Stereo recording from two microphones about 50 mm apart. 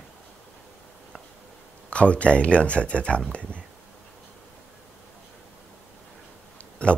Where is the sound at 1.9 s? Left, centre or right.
Left.